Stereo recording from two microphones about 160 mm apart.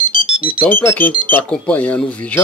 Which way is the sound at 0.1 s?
30° right (ahead or behind).